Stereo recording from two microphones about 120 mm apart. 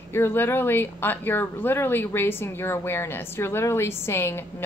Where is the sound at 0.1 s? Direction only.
20° left (ahead or behind).